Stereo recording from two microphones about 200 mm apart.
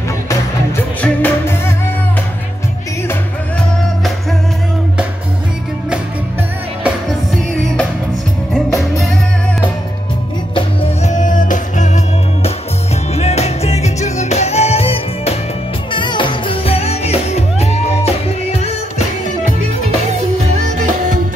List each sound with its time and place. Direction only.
1.0 s music: 10° left (ahead or behind)
10.5 s music: 30° left (ahead or behind)
13.1 s music: 30° left (ahead or behind)
20.1 s music: 35° right (ahead or behind)